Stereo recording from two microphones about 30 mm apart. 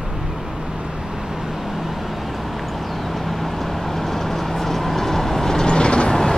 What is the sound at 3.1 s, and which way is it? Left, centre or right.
Vehicle, centre.